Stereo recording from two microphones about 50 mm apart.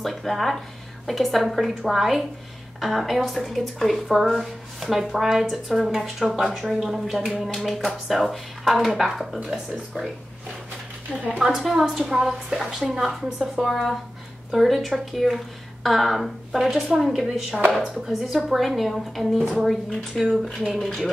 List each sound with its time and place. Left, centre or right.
0.0 s a woman's voice: centre
11.1 s a woman's voice: right
11.4 s a woman's voice: centre
13.4 s a woman's voice: centre
18.2 s a woman's voice: centre